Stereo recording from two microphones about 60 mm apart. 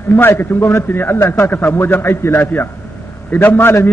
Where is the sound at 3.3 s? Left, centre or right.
Left.